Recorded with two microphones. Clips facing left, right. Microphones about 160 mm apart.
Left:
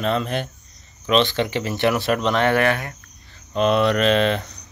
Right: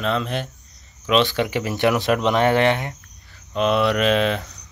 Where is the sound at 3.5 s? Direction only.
Centre (ahead or behind).